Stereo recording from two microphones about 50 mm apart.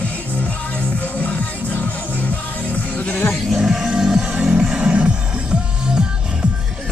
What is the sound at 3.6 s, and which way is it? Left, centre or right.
Music, centre.